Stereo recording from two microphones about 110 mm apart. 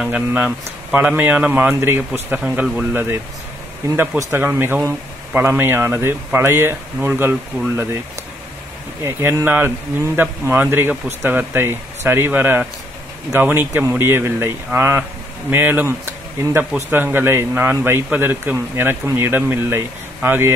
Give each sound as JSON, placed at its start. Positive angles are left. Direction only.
{"t": 0.0, "sound": "speech", "side_deg": -10}
{"t": 9.0, "sound": "speech", "side_deg": -20}